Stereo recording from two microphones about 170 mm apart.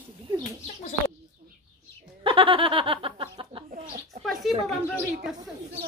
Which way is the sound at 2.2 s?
30° right (ahead or behind).